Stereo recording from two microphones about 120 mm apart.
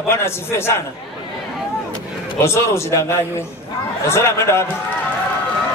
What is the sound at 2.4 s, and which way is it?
A man's voice, 20° left (ahead or behind).